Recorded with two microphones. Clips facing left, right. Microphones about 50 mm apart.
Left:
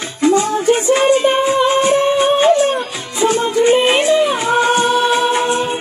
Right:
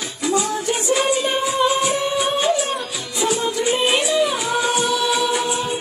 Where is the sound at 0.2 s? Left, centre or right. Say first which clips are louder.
Left 8 dB; left.